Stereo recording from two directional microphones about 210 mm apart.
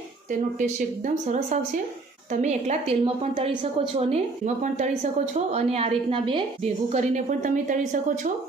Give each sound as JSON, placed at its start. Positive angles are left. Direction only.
{"t": 0.3, "sound": "a woman's voice", "side_deg": -35}